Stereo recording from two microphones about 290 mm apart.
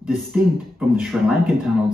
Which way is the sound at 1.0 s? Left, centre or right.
Centre.